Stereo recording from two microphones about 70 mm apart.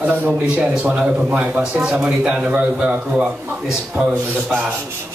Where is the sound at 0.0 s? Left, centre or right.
Right.